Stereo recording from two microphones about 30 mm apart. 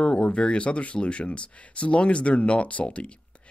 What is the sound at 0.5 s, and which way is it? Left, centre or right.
Speech, left.